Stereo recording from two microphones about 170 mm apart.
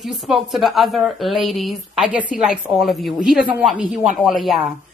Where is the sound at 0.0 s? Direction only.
Centre (ahead or behind).